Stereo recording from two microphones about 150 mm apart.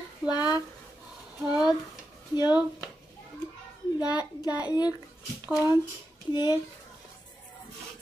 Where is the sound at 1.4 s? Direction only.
5° right (ahead or behind).